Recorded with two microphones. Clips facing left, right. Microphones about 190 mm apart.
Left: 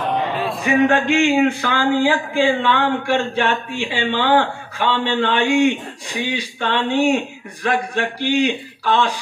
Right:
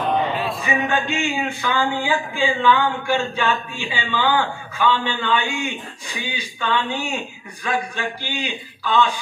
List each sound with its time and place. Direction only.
0.7 s a man's voice: 80° left